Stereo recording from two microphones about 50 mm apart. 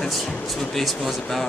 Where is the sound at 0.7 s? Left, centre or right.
Centre.